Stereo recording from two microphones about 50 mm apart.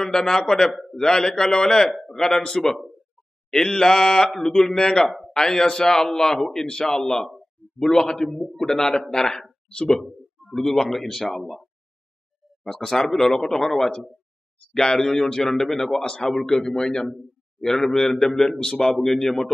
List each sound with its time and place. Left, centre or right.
0.0 s a man's voice: centre
1.9 s a sound: centre
2.1 s a man's voice: centre
12.6 s a man's voice: centre
16.0 s a man's voice: centre